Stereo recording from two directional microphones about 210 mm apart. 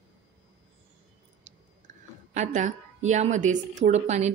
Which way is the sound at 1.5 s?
35° right (ahead or behind).